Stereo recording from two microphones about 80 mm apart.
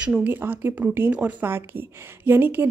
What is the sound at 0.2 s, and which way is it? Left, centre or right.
A woman's voice, right.